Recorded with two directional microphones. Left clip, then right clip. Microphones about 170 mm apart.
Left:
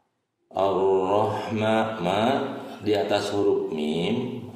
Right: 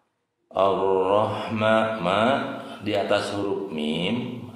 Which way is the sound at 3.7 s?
15° left (ahead or behind).